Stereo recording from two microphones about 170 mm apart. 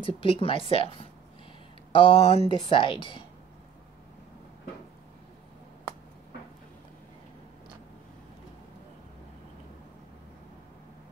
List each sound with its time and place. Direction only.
0.0 s speech: 30° left (ahead or behind)